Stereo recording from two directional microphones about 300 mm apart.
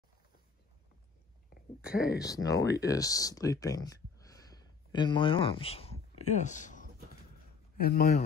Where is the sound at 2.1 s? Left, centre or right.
Centre.